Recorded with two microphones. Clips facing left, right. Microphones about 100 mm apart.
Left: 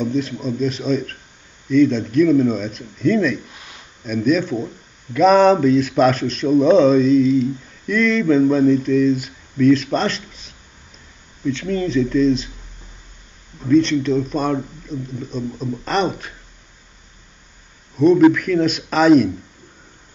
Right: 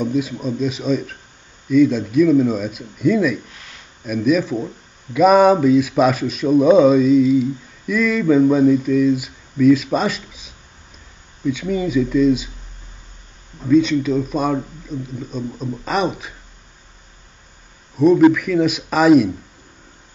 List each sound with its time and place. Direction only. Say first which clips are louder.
0.0 s a man's voice: right 1 dB; 5° right (ahead or behind)
13.7 s a man's voice: even; 5° right (ahead or behind)
17.9 s a man's voice: even; 5° right (ahead or behind)